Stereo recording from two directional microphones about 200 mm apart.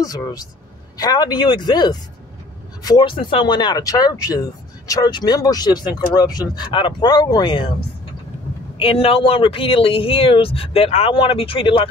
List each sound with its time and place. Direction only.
0.0 s speech: 20° left (ahead or behind)
8.7 s speech: 30° left (ahead or behind)